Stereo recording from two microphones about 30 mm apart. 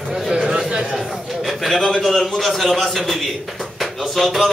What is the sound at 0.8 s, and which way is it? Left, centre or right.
A man's voice, centre.